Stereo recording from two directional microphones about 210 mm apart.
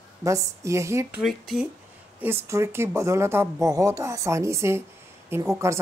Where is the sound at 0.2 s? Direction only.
15° right (ahead or behind).